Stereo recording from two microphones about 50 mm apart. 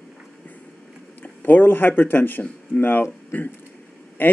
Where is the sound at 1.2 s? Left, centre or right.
Left.